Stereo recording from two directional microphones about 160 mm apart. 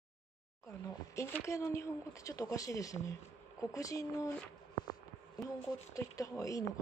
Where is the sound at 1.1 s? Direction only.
15° left (ahead or behind).